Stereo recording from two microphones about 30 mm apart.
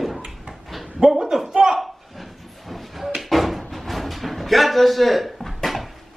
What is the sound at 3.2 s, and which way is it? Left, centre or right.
Slam, centre.